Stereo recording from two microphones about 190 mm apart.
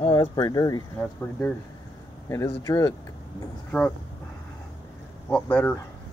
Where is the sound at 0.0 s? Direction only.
20° left (ahead or behind).